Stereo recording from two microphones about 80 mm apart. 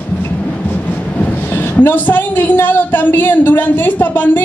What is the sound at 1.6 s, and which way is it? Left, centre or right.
Speech, left.